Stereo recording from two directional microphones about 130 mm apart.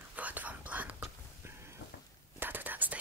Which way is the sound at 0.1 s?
10° right (ahead or behind).